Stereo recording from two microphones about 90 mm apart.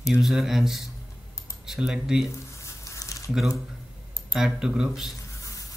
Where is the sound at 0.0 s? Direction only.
5° right (ahead or behind).